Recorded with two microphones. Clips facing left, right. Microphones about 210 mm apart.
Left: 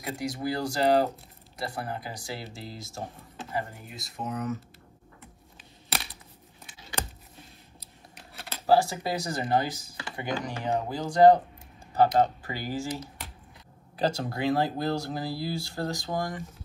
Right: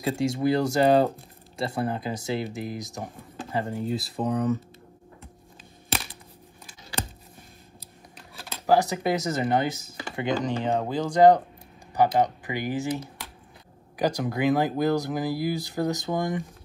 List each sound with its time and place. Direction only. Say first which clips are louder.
0.0 s speech: right 7 dB; 25° right (ahead or behind)
3.7 s speech: right 14 dB; 30° right (ahead or behind)
8.6 s speech: right 2 dB; 20° right (ahead or behind)